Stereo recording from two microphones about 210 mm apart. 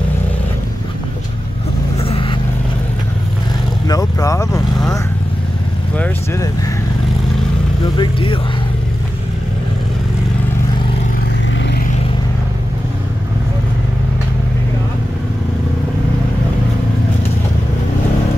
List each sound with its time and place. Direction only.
2.0 s vehicle: 25° left (ahead or behind)
3.8 s vehicle: 15° left (ahead or behind)
5.9 s vehicle: 10° left (ahead or behind)
8.0 s speech: 25° left (ahead or behind)